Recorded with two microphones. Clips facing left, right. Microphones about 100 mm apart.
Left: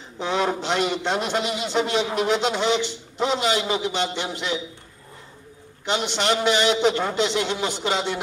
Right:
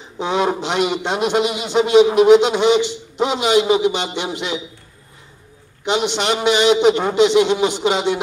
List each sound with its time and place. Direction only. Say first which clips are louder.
0.2 s a man's voice: right 5 dB; 15° right (ahead or behind)
5.9 s a man's voice: right 4 dB; 20° right (ahead or behind)